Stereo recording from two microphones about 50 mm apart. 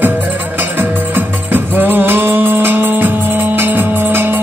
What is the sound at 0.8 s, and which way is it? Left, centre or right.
Music, right.